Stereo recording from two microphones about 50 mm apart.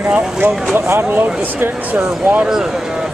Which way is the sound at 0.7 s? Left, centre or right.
Right.